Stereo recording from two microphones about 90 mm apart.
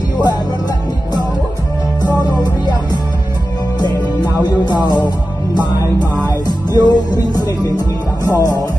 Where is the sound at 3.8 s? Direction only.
50° left (ahead or behind).